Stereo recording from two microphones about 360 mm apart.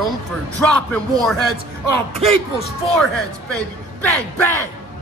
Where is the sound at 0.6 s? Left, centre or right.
Centre.